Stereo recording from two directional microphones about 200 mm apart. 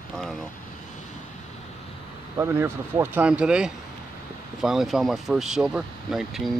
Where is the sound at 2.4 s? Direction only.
10° right (ahead or behind).